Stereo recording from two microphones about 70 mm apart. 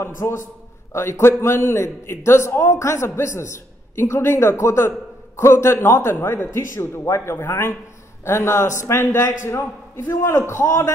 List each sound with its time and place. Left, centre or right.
0.0 s a man's voice: left
10.2 s a man's voice: left